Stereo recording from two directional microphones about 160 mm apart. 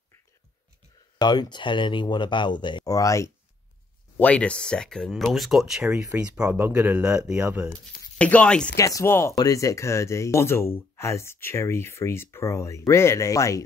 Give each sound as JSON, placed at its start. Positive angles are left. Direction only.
{"t": 1.1, "sound": "speech", "side_deg": 25}
{"t": 4.2, "sound": "speech", "side_deg": 10}
{"t": 8.2, "sound": "speech", "side_deg": 10}
{"t": 8.7, "sound": "speech", "side_deg": 20}